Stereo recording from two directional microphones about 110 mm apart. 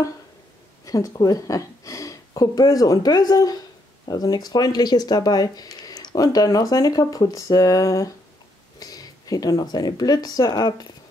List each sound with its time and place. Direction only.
0.8 s speech: 30° left (ahead or behind)